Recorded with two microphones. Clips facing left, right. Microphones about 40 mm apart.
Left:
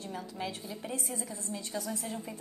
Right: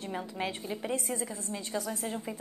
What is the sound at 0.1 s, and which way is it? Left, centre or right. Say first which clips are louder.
A woman's voice: right 4 dB; right.